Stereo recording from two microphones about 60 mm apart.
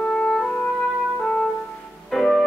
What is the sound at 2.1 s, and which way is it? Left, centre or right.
Music, centre.